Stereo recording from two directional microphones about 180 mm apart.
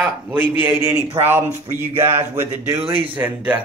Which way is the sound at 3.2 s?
10° right (ahead or behind).